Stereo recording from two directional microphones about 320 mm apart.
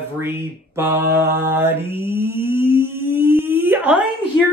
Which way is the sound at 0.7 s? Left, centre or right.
Centre.